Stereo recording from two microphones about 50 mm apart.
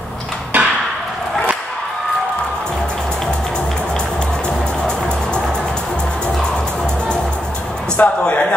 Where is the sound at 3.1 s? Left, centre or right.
Centre.